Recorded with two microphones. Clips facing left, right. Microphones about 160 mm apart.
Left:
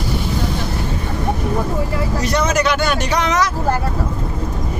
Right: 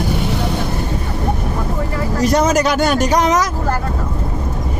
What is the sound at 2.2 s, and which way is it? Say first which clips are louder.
Speech: right 5 dB; 40° right (ahead or behind).